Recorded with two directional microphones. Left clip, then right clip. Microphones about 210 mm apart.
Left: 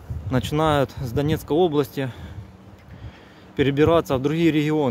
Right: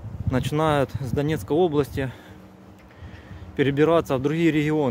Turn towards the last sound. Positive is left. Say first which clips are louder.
# left 1 dB
turn(degrees=0)  # may be behind; listen again after turning